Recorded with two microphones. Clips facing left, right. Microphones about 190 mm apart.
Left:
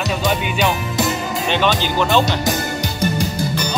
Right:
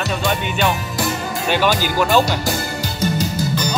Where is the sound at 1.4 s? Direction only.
5° right (ahead or behind).